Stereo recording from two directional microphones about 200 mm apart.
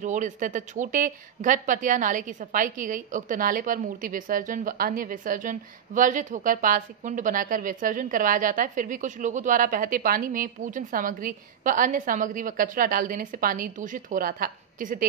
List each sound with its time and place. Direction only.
0.0 s a woman's voice: 40° right (ahead or behind)